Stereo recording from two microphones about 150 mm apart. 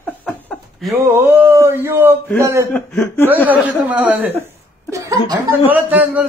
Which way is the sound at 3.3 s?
10° right (ahead or behind).